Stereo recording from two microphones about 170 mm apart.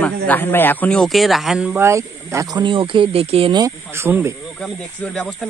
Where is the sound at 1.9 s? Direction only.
15° right (ahead or behind).